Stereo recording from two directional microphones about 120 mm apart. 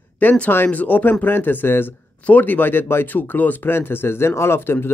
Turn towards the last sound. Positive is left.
turn(degrees=20)  # may be behind; listen again after turning